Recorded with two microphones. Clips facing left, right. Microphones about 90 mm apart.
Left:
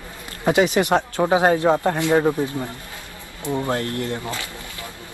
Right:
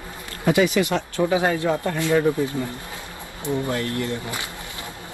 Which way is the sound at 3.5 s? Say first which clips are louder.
Left 1 dB; 25° left (ahead or behind).